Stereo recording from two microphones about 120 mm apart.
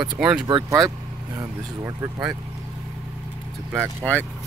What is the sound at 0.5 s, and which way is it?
Speech, 35° right (ahead or behind).